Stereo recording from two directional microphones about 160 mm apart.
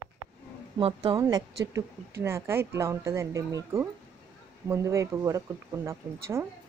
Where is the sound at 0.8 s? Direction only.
35° right (ahead or behind).